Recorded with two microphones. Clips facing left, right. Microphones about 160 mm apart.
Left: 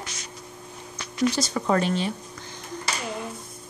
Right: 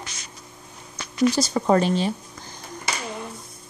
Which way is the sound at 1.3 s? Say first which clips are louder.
Right 4 dB; 35° right (ahead or behind).